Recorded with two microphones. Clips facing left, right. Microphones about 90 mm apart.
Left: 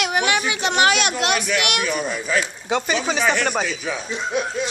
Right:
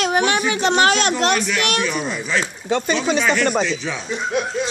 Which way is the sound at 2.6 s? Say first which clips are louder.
Right 4 dB; 10° left (ahead or behind).